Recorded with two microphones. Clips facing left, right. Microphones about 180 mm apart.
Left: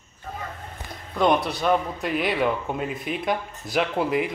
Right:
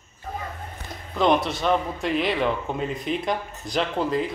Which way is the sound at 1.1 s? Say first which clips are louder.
Even; centre (ahead or behind).